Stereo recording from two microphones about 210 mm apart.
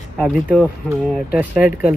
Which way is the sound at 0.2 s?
Centre (ahead or behind).